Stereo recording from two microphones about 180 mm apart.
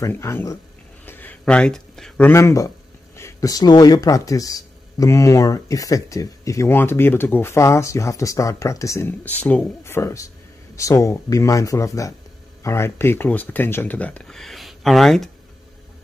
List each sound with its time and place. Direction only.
0.0 s speech: 15° left (ahead or behind)